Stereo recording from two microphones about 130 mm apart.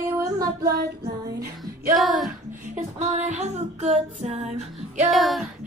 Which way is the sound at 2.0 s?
Centre (ahead or behind).